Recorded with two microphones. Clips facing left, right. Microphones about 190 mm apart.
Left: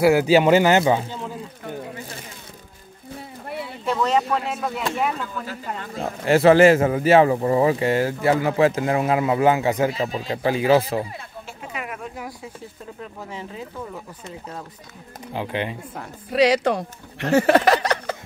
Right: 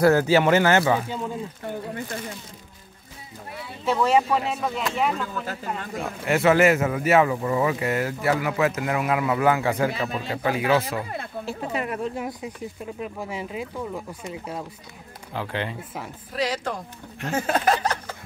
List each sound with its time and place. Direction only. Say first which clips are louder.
0.0 s speech: left 2 dB; 10° left (ahead or behind)
3.8 s speech: right 1 dB; 5° right (ahead or behind)
5.9 s speech: left 6 dB; 35° left (ahead or behind)
11.4 s speech: right 6 dB; 35° right (ahead or behind); by 14.6 s 10° right (ahead or behind)
15.3 s speech: left 3 dB; 20° left (ahead or behind)
16.3 s speech: left 10 dB; 75° left (ahead or behind)